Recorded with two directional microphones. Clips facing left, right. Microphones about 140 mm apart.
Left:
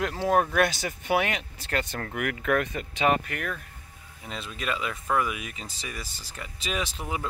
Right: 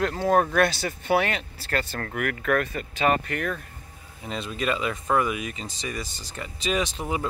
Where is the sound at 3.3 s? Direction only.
5° left (ahead or behind).